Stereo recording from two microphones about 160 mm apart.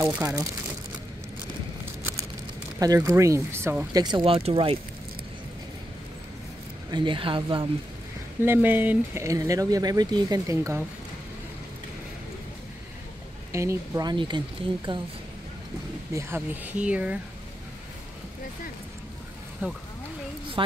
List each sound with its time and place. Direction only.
0.0 s speech: 10° right (ahead or behind)
2.8 s speech: 20° right (ahead or behind)
6.9 s speech: 30° right (ahead or behind)
8.4 s speech: 10° right (ahead or behind)
13.5 s speech: 20° right (ahead or behind)
16.1 s speech: 15° right (ahead or behind)
19.6 s speech: 10° right (ahead or behind)
20.6 s speech: 30° right (ahead or behind)